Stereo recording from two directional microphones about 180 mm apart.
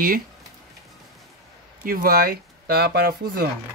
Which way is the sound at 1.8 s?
55° right (ahead or behind).